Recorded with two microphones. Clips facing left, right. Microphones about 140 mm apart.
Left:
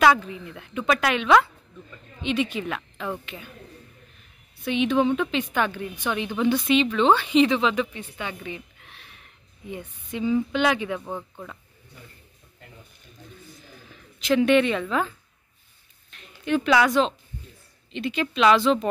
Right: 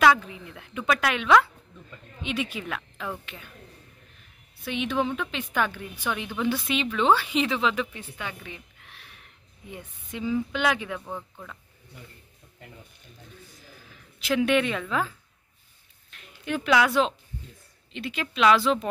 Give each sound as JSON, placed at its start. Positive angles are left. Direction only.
{"t": 0.0, "sound": "a woman's voice", "side_deg": 0}
{"t": 4.6, "sound": "a woman's voice", "side_deg": 0}
{"t": 11.1, "sound": "speech", "side_deg": 15}
{"t": 14.2, "sound": "a woman's voice", "side_deg": -5}